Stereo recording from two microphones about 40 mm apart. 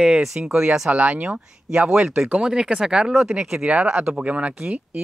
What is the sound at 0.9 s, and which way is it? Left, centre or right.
Speech, right.